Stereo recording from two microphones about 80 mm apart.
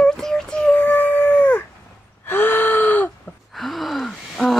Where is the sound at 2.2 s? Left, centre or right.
Left.